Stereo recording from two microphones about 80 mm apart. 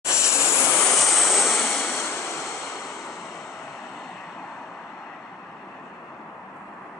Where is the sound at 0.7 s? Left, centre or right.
Centre.